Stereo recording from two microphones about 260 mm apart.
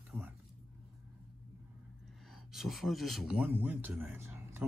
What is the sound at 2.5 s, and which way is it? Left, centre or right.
Speech, centre.